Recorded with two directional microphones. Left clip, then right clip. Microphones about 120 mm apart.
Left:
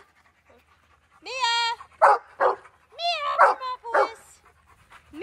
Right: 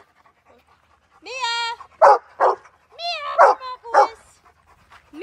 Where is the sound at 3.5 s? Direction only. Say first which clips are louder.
Right 6 dB; 20° right (ahead or behind).